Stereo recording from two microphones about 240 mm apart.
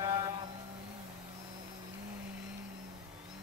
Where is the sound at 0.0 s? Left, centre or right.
Centre.